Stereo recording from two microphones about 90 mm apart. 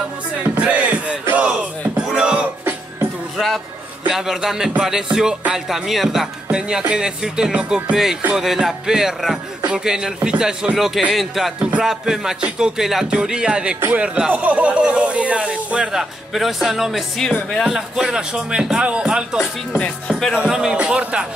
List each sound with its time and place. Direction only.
0.4 s music: 15° right (ahead or behind)
1.2 s a sound: 15° right (ahead or behind)
3.3 s music: centre (ahead or behind)
4.1 s speech: 5° right (ahead or behind)